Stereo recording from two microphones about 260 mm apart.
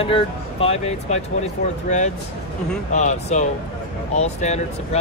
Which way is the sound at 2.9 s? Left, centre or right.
Left.